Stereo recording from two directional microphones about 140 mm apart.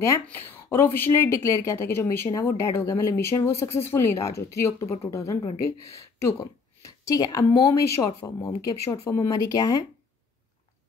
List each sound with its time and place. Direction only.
0.0 s a woman's voice: 15° left (ahead or behind)